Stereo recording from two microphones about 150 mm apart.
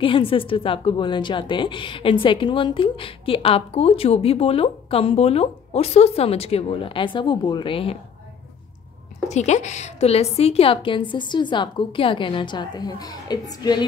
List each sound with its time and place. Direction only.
0.0 s a woman's voice: 35° left (ahead or behind)
9.3 s a woman's voice: 50° left (ahead or behind); by 13.8 s 25° left (ahead or behind)